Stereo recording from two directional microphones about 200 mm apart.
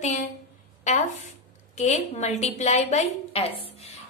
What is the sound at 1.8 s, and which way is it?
A woman's voice, 35° left (ahead or behind).